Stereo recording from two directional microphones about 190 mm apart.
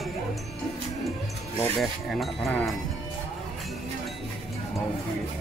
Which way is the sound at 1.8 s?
Centre (ahead or behind).